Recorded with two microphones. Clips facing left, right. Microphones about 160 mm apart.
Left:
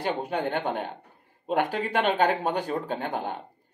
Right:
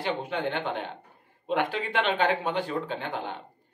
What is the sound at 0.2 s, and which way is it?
Speech, 40° left (ahead or behind).